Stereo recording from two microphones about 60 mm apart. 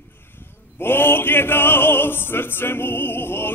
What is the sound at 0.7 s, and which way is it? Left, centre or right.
Music, left.